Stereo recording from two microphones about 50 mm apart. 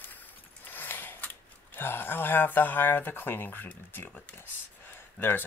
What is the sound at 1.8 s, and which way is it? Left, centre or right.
Speech, left.